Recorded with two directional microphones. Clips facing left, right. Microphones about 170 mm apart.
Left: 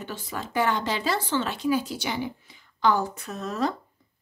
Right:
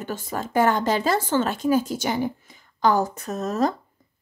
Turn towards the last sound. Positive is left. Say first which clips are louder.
# right 5 dB
turn(degrees=-45)  # may be behind; listen again after turning